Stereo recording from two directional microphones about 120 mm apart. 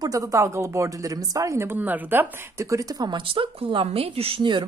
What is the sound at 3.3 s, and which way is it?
A woman's voice, 50° right (ahead or behind).